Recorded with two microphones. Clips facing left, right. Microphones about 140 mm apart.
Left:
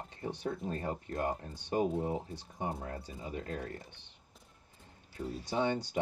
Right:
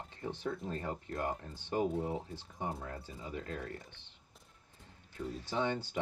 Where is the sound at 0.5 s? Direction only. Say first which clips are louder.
Left 2 dB; 25° left (ahead or behind).